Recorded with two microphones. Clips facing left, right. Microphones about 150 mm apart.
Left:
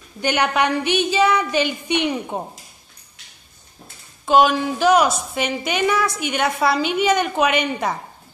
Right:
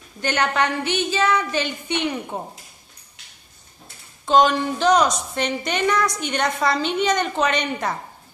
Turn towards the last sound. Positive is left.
turn(degrees=10)  # may be behind; listen again after turning